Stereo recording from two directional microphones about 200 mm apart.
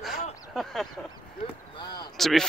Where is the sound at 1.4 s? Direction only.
25° left (ahead or behind).